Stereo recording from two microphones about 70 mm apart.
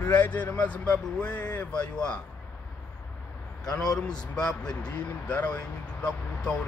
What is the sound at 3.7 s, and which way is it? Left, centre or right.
Speech, left.